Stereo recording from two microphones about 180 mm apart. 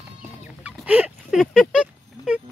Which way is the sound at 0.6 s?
10° right (ahead or behind).